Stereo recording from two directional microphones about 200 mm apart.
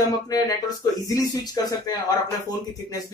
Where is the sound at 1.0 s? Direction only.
20° left (ahead or behind).